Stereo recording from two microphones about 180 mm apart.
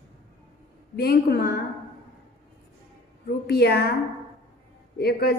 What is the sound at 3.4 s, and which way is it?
Speech, 60° left (ahead or behind).